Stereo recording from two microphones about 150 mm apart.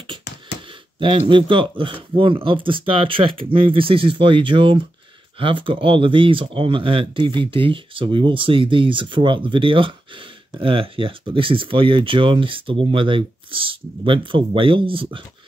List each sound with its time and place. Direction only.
0.9 s speech: 35° right (ahead or behind)